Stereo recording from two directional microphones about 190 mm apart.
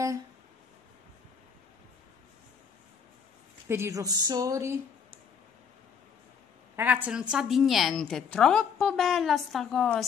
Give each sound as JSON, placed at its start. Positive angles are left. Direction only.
{"t": 3.6, "sound": "speech", "side_deg": -15}
{"t": 6.8, "sound": "a woman's voice", "side_deg": -10}